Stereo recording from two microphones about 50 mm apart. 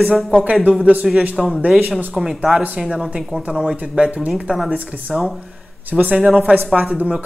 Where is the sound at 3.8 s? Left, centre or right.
Right.